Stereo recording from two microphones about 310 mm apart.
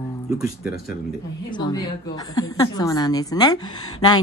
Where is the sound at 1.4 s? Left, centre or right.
Centre.